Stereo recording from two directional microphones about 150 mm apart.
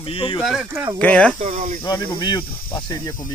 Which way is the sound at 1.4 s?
55° right (ahead or behind).